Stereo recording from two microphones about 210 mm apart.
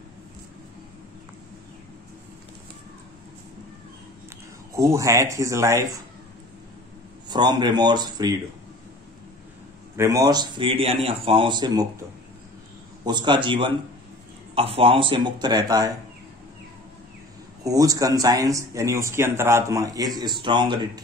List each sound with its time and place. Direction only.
4.7 s speech: 15° right (ahead or behind)
7.2 s speech: 20° right (ahead or behind)
9.9 s speech: 15° right (ahead or behind)
13.0 s speech: 20° right (ahead or behind)
17.6 s speech: 15° right (ahead or behind)